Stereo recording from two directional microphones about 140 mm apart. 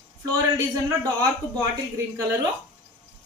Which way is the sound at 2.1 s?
25° right (ahead or behind).